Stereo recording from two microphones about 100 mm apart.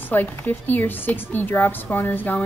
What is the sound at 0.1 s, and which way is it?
A woman's voice, 20° left (ahead or behind).